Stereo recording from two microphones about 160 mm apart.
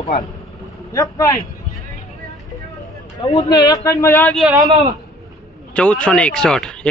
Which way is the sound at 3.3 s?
25° left (ahead or behind).